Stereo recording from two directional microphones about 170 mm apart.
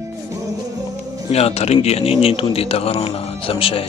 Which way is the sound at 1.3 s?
35° left (ahead or behind).